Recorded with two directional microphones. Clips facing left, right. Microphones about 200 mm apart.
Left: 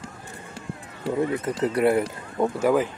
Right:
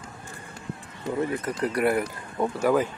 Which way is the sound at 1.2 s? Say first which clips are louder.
Left 3 dB; 25° left (ahead or behind).